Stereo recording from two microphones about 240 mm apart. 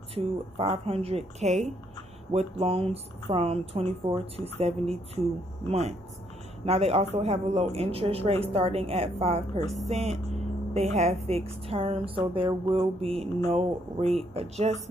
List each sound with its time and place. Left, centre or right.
0.1 s speech: right